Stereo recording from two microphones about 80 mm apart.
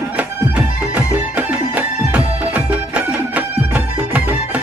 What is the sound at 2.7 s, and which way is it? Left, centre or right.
Music, centre.